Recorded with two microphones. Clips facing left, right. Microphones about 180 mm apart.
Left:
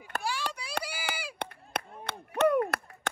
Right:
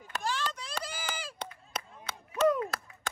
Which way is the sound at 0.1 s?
55° left (ahead or behind).